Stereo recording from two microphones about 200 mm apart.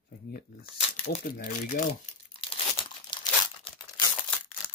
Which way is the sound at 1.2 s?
45° left (ahead or behind).